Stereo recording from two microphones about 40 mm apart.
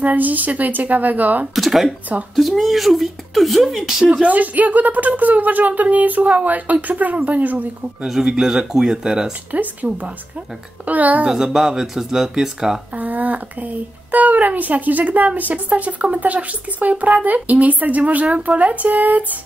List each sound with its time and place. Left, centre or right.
0.0 s speech: right
1.5 s speech: centre
3.8 s speech: centre
4.3 s speech: right
8.2 s speech: centre
9.5 s speech: right
9.8 s a woman's voice: right
10.9 s a woman's voice: right
11.2 s speech: centre
12.9 s speech: right